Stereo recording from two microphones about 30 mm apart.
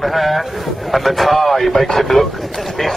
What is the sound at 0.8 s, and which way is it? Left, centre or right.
Radio, centre.